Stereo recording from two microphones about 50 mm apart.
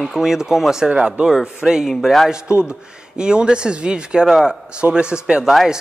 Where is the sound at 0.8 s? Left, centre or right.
Right.